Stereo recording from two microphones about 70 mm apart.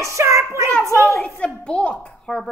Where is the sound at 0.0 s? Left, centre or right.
Right.